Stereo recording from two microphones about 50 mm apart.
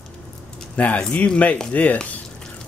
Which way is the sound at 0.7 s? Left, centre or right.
Left.